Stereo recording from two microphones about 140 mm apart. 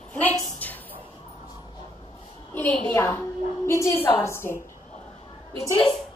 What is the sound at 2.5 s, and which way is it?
A woman's voice, 10° left (ahead or behind).